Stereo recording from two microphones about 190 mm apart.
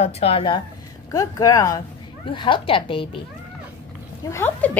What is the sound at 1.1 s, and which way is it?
Speech, 15° left (ahead or behind).